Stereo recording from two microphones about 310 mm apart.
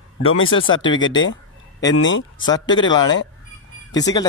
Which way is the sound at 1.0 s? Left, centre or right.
Left.